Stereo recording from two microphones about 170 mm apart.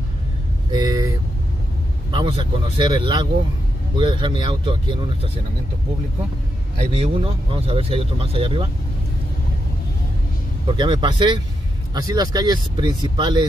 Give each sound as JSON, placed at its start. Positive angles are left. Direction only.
{"t": 0.7, "sound": "vehicle", "side_deg": -25}
{"t": 2.0, "sound": "speech", "side_deg": -30}
{"t": 6.8, "sound": "speech", "side_deg": -35}
{"t": 10.7, "sound": "speech", "side_deg": -30}